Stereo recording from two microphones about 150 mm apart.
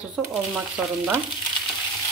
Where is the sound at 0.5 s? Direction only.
10° right (ahead or behind).